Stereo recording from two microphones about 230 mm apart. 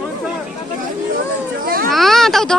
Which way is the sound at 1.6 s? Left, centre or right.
Right.